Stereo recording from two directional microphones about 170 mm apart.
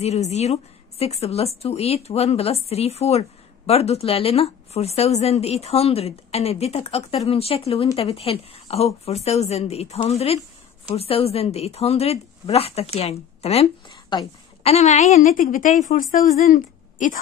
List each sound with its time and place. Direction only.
0.0 s a woman's voice: 40° left (ahead or behind)